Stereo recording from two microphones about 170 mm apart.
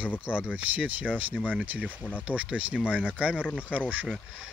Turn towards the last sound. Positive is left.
turn(degrees=-10)  # may be behind; listen again after turning